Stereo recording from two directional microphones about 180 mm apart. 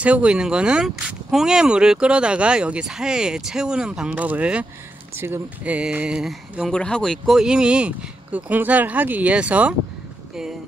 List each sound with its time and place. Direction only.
0.0 s speech: 5° right (ahead or behind)